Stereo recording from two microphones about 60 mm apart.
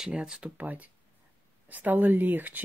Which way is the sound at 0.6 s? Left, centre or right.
Right.